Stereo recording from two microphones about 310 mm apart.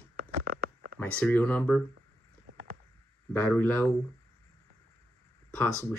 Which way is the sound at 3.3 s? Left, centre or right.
Centre.